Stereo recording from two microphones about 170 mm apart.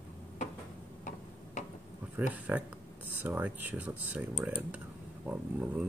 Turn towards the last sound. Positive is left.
turn(degrees=-10)  # may be behind; listen again after turning